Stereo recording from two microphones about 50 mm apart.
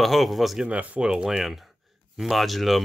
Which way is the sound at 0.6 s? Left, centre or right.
Right.